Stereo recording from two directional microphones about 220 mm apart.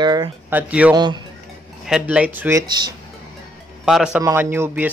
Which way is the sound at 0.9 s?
20° right (ahead or behind).